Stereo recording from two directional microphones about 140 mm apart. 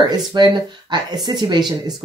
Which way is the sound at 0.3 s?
30° right (ahead or behind).